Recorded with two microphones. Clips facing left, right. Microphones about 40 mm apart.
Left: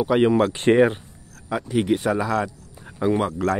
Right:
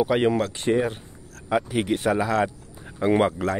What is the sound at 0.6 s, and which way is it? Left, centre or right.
Speech, left.